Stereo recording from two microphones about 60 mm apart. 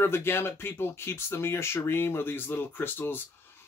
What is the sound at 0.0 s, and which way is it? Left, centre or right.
Speech, left.